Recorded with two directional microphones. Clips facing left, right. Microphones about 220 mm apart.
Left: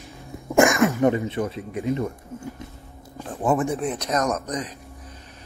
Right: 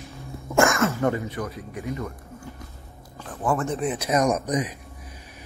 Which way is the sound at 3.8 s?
5° right (ahead or behind).